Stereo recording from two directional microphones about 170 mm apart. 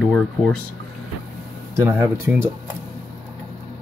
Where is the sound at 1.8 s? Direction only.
15° right (ahead or behind).